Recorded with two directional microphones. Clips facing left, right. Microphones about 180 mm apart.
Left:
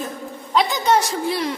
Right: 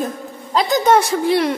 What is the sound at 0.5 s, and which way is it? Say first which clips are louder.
A woman's voice: right 4 dB; 40° right (ahead or behind).